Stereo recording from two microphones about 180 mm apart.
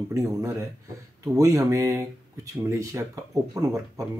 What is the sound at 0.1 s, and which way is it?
Speech, 15° right (ahead or behind).